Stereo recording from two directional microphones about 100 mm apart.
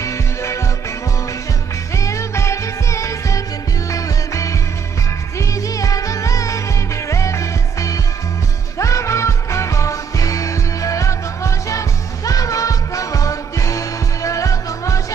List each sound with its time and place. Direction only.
0.0 s music: 30° left (ahead or behind)
2.0 s music: 30° left (ahead or behind)
5.8 s music: 35° left (ahead or behind)